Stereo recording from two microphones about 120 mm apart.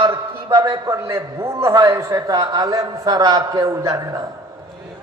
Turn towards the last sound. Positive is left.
turn(degrees=-30)  # may be behind; listen again after turning